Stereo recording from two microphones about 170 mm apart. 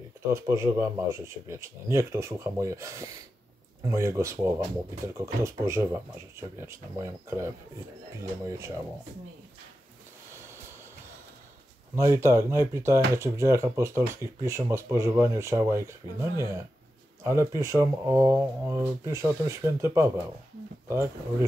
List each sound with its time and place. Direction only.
0.3 s speech: 15° right (ahead or behind)
11.9 s speech: 15° right (ahead or behind)